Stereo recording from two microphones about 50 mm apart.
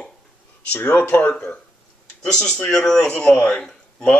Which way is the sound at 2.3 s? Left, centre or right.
Centre.